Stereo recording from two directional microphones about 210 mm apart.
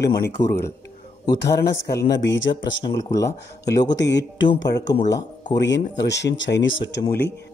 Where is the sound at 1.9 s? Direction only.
55° left (ahead or behind).